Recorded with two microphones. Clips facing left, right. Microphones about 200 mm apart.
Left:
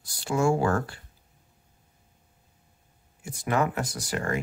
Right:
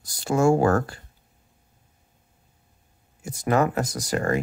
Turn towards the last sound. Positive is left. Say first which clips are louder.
# right 5 dB
turn(degrees=-40)  # may be behind; listen again after turning